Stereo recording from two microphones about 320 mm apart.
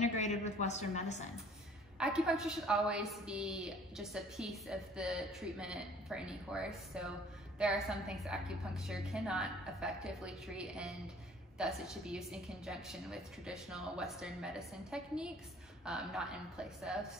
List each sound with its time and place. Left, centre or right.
0.0 s a woman's voice: left
2.0 s a woman's voice: centre